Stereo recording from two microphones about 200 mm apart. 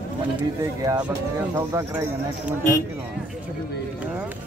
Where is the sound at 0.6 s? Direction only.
15° right (ahead or behind).